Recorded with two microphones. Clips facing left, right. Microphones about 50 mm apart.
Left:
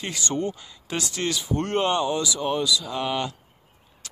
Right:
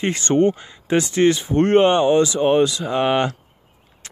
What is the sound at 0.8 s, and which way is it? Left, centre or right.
Speech, right.